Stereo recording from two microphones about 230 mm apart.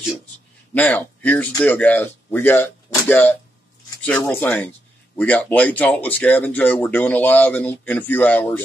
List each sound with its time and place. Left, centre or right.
0.7 s speech: centre